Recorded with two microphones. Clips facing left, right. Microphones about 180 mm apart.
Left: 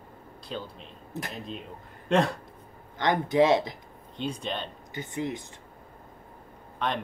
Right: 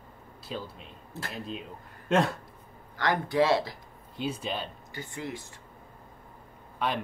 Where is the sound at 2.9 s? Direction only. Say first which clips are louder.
Left 3 dB; 20° left (ahead or behind).